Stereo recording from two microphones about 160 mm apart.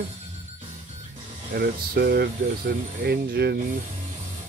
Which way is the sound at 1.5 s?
75° right (ahead or behind).